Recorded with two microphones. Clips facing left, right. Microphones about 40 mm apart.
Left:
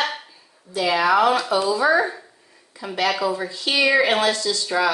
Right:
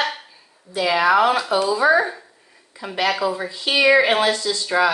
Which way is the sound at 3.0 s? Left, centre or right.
Centre.